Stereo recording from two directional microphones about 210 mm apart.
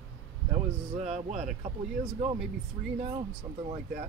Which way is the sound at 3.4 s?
10° right (ahead or behind).